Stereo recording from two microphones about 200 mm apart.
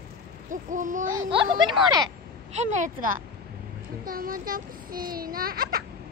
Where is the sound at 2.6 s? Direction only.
40° right (ahead or behind).